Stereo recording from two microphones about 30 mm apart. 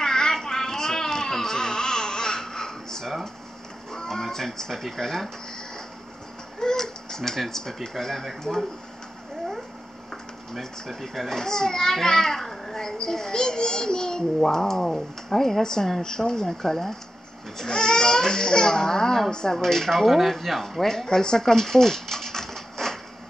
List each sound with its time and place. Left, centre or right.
0.0 s a sound: centre
3.9 s speech: centre
6.6 s a sound: centre
8.0 s speech: centre
10.6 s speech: centre
11.3 s a child's voice: centre
17.6 s a sound: left
19.5 s speech: centre
20.8 s typewriter: centre